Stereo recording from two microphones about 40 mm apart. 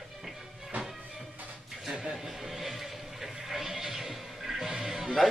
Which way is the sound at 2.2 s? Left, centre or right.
Centre.